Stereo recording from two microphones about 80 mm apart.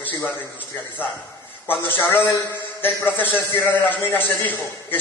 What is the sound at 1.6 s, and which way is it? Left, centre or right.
A man's voice, left.